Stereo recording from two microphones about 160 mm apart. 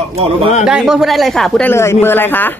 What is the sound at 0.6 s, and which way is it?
A woman's voice, 5° right (ahead or behind).